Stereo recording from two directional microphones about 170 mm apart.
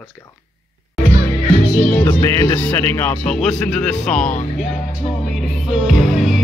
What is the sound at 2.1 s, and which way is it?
Speech, 20° left (ahead or behind).